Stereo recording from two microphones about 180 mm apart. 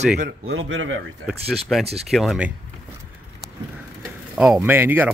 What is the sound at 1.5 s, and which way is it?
Speech, centre (ahead or behind).